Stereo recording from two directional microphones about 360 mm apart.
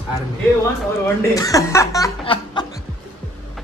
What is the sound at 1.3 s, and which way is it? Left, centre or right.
Speech, centre.